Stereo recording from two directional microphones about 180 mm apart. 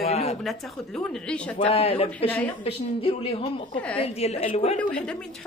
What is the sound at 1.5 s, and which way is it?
Speech, 30° left (ahead or behind).